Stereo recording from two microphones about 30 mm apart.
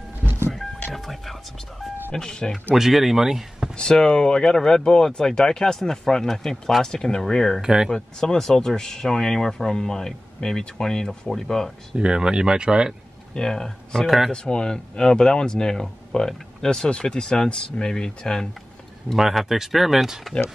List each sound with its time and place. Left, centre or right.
0.9 s speech: centre
2.1 s speech: left
2.7 s speech: centre
3.9 s speech: left
7.6 s speech: right
7.9 s speech: left
12.0 s speech: right
13.4 s speech: centre
14.0 s speech: centre
14.3 s speech: left
19.3 s speech: centre